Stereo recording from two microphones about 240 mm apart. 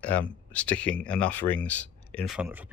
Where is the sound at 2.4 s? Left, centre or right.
Centre.